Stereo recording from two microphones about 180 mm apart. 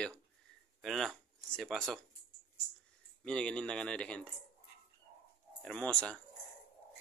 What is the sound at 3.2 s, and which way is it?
Speech, 5° left (ahead or behind).